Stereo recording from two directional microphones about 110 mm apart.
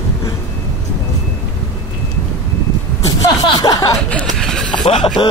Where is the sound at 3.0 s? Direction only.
35° left (ahead or behind).